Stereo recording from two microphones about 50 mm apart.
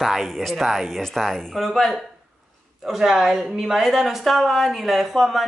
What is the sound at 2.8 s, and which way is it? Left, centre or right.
A woman's voice, centre.